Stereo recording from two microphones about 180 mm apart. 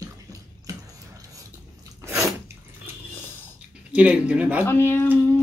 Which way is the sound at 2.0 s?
15° right (ahead or behind).